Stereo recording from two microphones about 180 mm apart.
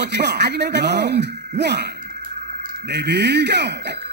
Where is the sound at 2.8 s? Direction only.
65° right (ahead or behind).